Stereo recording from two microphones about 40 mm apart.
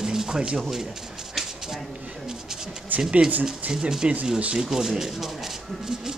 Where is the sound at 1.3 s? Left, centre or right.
Centre.